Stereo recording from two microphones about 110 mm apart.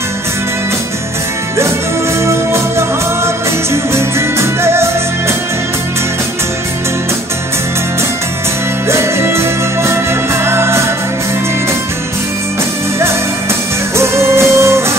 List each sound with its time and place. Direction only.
3.7 s music: 25° right (ahead or behind)
8.8 s music: 25° right (ahead or behind)
13.9 s music: 25° right (ahead or behind)